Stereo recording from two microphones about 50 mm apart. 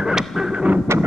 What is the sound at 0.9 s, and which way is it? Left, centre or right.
Wind noise, right.